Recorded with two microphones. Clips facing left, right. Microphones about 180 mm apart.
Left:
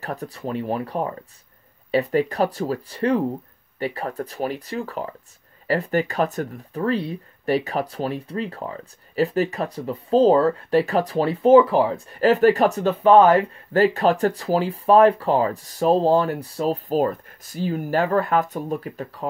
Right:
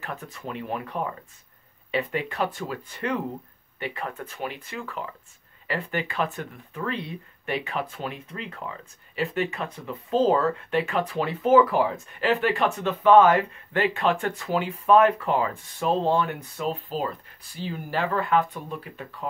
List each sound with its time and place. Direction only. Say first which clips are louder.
0.0 s speech: left 6 dB; 35° left (ahead or behind)